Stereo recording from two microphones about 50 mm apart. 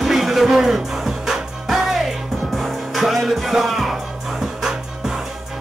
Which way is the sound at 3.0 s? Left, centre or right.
Centre.